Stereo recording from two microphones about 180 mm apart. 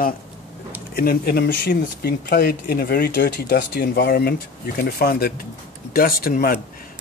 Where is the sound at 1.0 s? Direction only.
60° left (ahead or behind).